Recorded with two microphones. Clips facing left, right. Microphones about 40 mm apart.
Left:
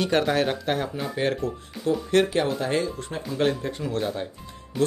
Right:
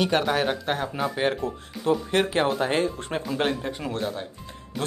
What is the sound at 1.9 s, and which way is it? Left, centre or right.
Speech, right.